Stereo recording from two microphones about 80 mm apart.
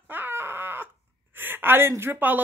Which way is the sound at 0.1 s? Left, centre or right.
Right.